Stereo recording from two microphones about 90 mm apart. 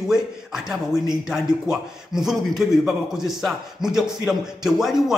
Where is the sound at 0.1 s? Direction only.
5° right (ahead or behind).